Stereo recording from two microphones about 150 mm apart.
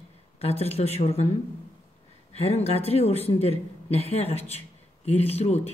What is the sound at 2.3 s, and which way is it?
A man's voice, 45° left (ahead or behind).